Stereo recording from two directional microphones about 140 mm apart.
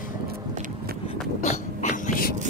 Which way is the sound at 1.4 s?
55° left (ahead or behind).